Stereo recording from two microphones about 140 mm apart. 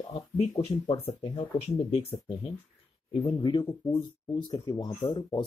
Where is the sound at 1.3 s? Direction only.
45° left (ahead or behind).